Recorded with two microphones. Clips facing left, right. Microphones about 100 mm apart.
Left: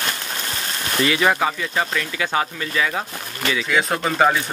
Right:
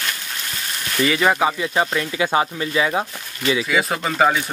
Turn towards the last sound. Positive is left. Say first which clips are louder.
# even
turn(degrees=0)  # may be behind; listen again after turning